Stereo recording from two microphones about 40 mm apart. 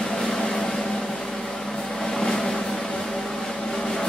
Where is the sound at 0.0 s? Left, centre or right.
Centre.